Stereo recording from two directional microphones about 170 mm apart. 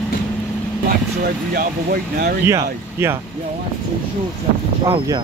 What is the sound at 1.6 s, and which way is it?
Speech, 60° right (ahead or behind).